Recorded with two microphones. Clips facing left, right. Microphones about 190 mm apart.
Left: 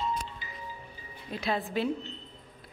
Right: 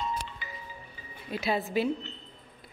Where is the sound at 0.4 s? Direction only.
65° right (ahead or behind).